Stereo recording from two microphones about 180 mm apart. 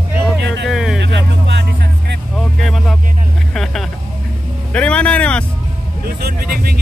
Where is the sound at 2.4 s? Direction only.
Centre (ahead or behind).